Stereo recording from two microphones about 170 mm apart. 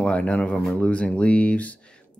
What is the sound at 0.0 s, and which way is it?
Speech, 10° left (ahead or behind).